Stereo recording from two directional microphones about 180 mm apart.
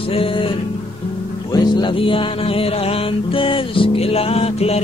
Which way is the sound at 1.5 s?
25° left (ahead or behind).